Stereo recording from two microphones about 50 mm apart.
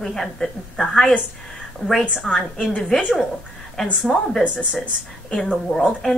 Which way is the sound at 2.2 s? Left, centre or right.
Centre.